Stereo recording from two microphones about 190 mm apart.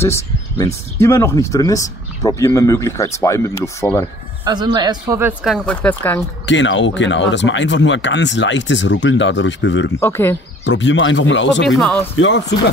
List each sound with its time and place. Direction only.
0.0 s speech: 15° left (ahead or behind)
4.5 s a woman's voice: 20° right (ahead or behind)
5.4 s speech: 5° left (ahead or behind)
6.4 s speech: 75° left (ahead or behind)
9.9 s speech: 10° left (ahead or behind)
10.6 s speech: 70° left (ahead or behind)
11.6 s speech: centre (ahead or behind)
12.2 s speech: 75° left (ahead or behind)